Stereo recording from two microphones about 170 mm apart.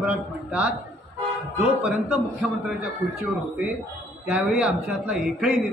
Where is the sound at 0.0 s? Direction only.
5° right (ahead or behind).